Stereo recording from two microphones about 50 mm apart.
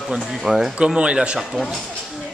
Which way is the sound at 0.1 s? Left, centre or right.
Centre.